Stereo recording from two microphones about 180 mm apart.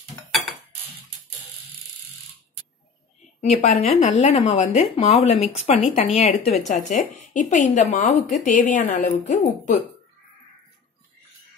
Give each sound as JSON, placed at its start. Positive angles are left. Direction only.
{"t": 3.3, "sound": "a woman's voice", "side_deg": 40}